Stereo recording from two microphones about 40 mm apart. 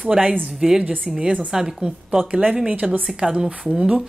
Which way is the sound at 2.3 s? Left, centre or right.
Right.